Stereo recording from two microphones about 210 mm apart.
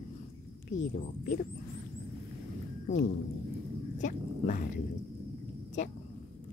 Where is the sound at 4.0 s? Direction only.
40° left (ahead or behind).